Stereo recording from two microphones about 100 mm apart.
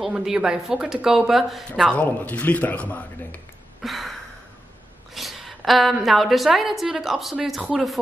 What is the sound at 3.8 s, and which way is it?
Gasp, centre (ahead or behind).